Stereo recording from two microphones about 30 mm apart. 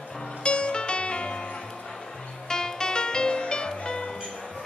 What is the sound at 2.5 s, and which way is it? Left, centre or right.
Music, left.